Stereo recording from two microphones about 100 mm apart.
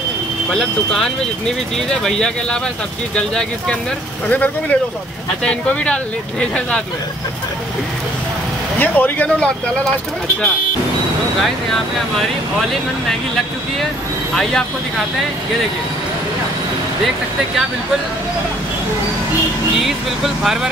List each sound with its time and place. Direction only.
0.5 s speech: 5° left (ahead or behind)
8.7 s speech: 15° left (ahead or behind)
11.4 s speech: centre (ahead or behind)
14.3 s speech: 5° left (ahead or behind)